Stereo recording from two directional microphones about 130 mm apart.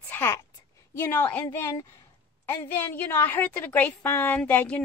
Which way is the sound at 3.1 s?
15° left (ahead or behind).